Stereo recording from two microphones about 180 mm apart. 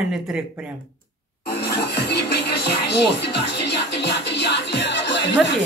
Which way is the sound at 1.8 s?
65° left (ahead or behind).